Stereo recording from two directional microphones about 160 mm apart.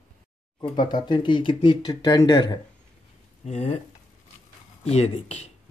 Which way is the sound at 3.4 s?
45° left (ahead or behind).